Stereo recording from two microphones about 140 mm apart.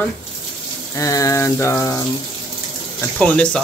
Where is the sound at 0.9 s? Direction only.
25° left (ahead or behind).